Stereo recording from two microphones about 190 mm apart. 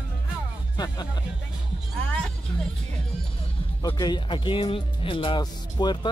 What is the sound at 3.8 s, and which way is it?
Speech, 20° left (ahead or behind).